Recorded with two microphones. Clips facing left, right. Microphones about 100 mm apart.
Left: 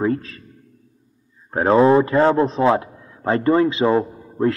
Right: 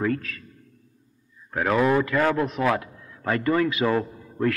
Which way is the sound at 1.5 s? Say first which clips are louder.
Left 7 dB; 30° left (ahead or behind).